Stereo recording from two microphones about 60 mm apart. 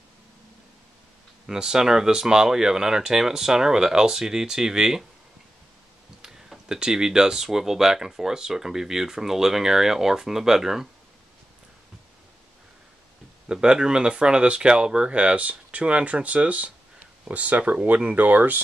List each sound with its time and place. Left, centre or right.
1.5 s speech: centre
6.2 s speech: centre
13.5 s speech: centre